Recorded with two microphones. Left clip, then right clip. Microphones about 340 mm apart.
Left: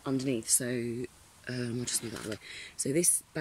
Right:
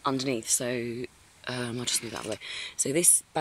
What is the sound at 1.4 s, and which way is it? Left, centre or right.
Speech, centre.